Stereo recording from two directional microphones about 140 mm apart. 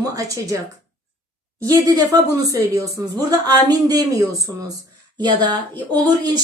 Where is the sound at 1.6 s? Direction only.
25° right (ahead or behind).